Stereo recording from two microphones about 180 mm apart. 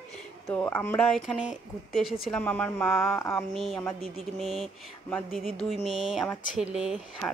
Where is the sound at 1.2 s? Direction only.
5° right (ahead or behind).